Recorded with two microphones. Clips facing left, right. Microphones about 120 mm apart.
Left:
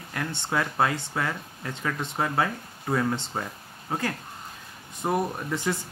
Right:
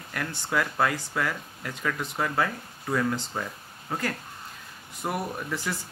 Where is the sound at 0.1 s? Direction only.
25° left (ahead or behind).